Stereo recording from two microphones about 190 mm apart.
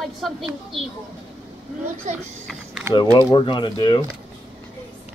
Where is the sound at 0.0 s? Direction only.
Centre (ahead or behind).